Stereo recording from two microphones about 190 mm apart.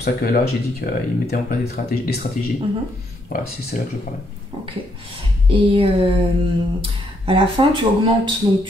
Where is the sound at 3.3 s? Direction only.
45° left (ahead or behind).